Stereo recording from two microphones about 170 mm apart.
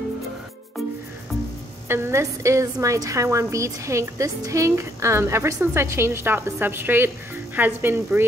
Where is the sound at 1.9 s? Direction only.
15° right (ahead or behind).